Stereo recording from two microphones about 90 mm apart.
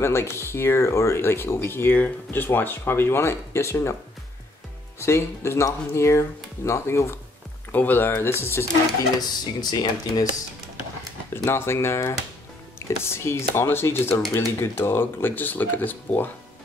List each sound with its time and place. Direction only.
0.0 s speech: 30° left (ahead or behind)
5.0 s speech: 30° left (ahead or behind)
7.7 s speech: 20° left (ahead or behind)
9.6 s speech: 50° left (ahead or behind)
11.3 s speech: 30° left (ahead or behind)